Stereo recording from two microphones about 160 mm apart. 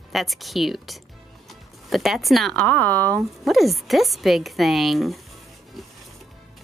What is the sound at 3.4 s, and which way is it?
A woman's voice, centre (ahead or behind).